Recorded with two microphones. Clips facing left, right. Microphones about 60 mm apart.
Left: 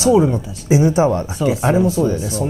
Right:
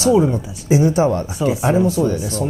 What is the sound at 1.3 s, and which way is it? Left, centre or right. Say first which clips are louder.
Speech: left 1 dB; centre.